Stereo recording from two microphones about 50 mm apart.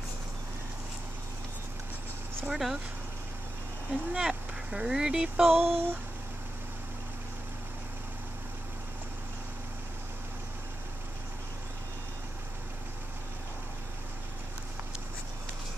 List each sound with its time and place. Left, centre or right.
2.5 s speech: centre
3.9 s speech: centre
5.4 s a sound: right